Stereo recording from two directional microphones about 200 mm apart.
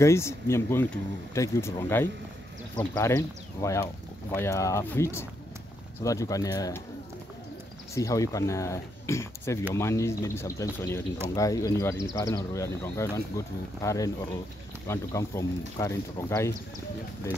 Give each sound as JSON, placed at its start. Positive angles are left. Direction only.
{"t": 0.0, "sound": "speech", "side_deg": 15}
{"t": 7.9, "sound": "speech", "side_deg": 15}